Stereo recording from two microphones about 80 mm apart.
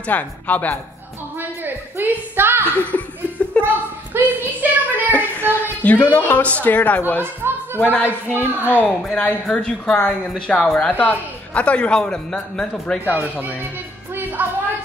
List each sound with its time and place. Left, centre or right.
0.0 s a woman's voice: left
1.4 s a sound: right
2.7 s speech: centre
3.6 s a sound: centre
4.1 s child singing: right
5.1 s a sound: centre
7.2 s children playing: right
7.8 s a woman's voice: left; by 13.0 s centre
13.1 s speech: right